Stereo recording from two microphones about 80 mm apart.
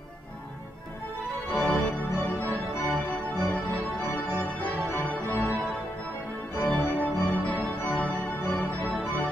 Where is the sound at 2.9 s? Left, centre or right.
Centre.